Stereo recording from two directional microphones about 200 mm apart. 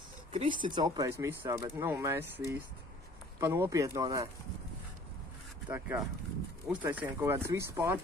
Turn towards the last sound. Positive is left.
turn(degrees=-15)  # may be behind; listen again after turning